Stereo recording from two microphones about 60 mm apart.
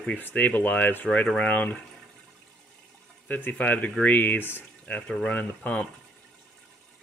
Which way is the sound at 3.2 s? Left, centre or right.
Left.